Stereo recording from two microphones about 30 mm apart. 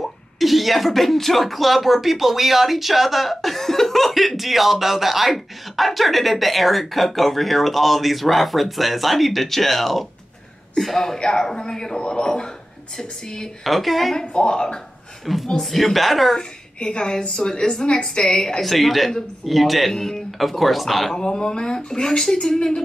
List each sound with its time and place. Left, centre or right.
0.0 s a woman's voice: centre
11.1 s a woman's voice: left
13.7 s speech: centre
14.3 s a woman's voice: left
15.3 s speech: centre
16.3 s a woman's voice: left
18.6 s speech: centre
19.9 s a woman's voice: centre
20.2 s speech: centre
21.2 s a woman's voice: left